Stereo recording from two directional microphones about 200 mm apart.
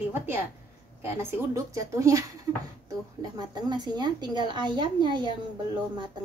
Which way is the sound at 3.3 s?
20° right (ahead or behind).